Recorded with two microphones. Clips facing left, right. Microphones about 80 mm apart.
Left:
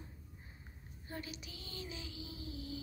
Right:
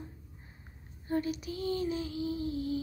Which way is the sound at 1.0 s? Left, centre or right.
Right.